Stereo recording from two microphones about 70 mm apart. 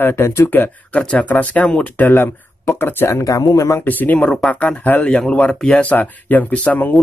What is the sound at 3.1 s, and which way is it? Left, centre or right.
Speech, left.